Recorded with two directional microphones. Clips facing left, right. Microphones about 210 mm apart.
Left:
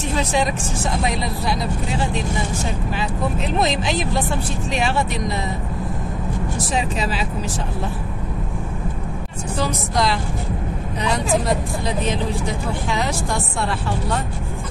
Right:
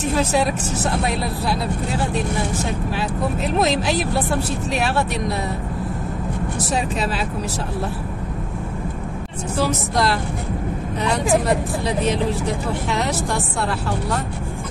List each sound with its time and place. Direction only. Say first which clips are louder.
0.0 s speech: right 2 dB; 5° right (ahead or behind)
6.7 s speech: right 1 dB; centre (ahead or behind)
9.6 s speech: right 1 dB; centre (ahead or behind)